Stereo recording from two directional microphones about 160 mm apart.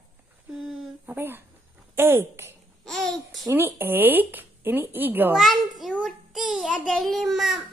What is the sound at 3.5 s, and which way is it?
A woman's voice, 15° right (ahead or behind).